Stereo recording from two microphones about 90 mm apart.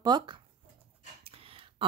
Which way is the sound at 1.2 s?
90° right.